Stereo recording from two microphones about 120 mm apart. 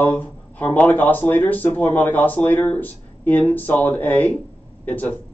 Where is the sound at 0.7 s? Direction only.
15° left (ahead or behind).